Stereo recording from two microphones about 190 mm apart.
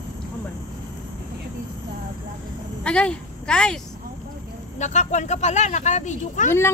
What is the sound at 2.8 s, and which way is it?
Speech, 5° left (ahead or behind).